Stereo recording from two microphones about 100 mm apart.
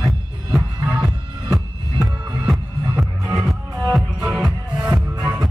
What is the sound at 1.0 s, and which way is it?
Music, centre (ahead or behind).